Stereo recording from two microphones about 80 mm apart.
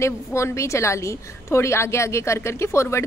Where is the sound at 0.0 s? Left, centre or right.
Left.